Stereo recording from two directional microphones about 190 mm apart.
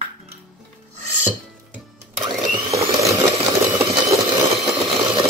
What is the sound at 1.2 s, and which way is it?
Music, 5° right (ahead or behind).